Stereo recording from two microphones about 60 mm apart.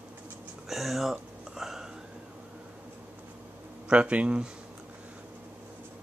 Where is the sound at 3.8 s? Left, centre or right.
Centre.